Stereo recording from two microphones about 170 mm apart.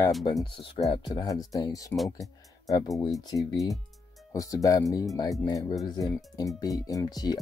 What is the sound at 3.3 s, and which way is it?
Speech, 20° left (ahead or behind).